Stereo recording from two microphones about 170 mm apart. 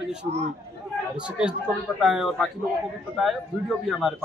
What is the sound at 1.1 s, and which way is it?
A man's voice, 5° right (ahead or behind).